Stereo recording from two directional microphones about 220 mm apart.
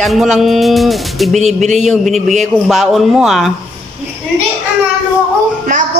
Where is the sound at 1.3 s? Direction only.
30° right (ahead or behind).